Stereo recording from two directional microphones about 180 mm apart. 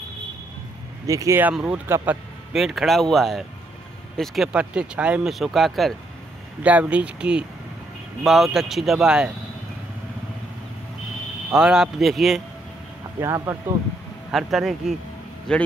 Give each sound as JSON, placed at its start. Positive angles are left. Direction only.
{"t": 1.0, "sound": "speech", "side_deg": -20}
{"t": 11.5, "sound": "speech", "side_deg": -5}
{"t": 13.2, "sound": "speech", "side_deg": -15}
{"t": 14.3, "sound": "speech", "side_deg": 0}